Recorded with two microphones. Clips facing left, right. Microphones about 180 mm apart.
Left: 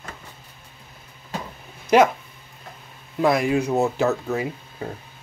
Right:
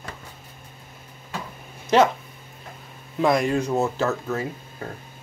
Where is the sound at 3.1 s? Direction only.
5° left (ahead or behind).